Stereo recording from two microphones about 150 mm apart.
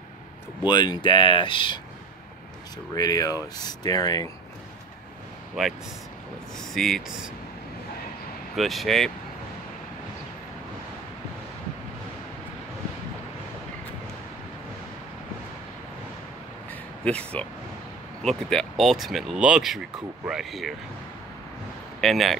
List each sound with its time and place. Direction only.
0.6 s speech: 30° left (ahead or behind)
3.0 s speech: 25° left (ahead or behind)
5.6 s speech: centre (ahead or behind)
8.5 s speech: centre (ahead or behind)
17.0 s speech: 10° left (ahead or behind)
22.0 s speech: centre (ahead or behind)